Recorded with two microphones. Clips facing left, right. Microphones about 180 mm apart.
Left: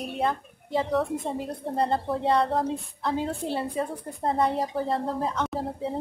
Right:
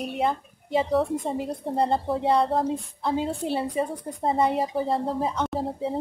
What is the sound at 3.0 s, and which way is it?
A woman's voice, 15° right (ahead or behind).